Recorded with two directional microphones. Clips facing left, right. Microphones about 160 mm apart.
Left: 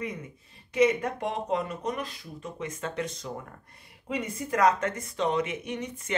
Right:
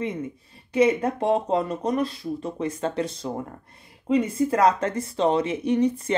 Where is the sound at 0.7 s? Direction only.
30° right (ahead or behind).